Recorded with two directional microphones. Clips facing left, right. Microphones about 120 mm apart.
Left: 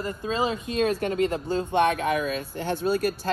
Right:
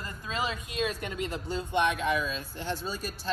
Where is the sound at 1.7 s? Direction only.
55° left (ahead or behind).